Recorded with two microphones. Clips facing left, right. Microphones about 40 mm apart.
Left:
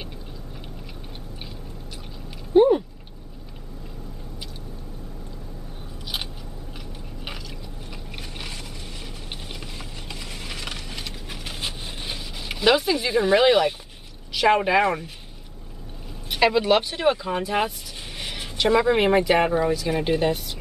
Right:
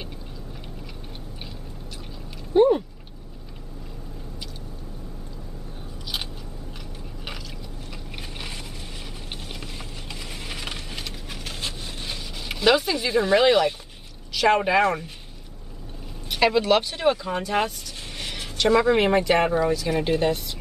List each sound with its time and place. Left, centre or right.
2.5 s speech: centre
9.5 s vehicle: centre
14.3 s speech: centre
16.3 s speech: centre